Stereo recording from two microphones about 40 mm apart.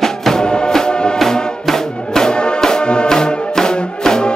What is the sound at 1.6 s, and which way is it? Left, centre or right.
Music, centre.